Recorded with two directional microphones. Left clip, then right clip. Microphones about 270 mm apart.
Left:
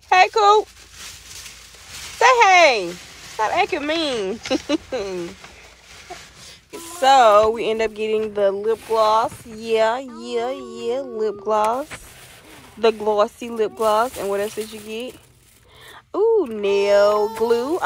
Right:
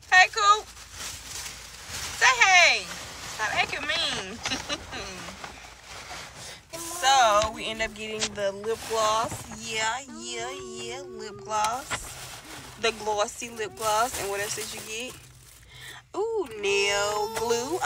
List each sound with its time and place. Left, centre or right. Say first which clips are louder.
0.1 s speech: left 5 dB; centre
2.1 s speech: left 6 dB; centre
7.0 s speech: left 8 dB; centre
12.8 s speech: left 9 dB; centre
16.1 s speech: left 11 dB; centre